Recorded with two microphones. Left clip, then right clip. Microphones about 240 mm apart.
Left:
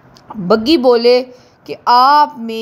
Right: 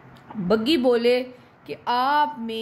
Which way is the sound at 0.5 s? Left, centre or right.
Left.